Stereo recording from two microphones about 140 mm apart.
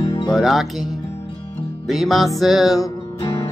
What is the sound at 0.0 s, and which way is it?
Music, 35° left (ahead or behind).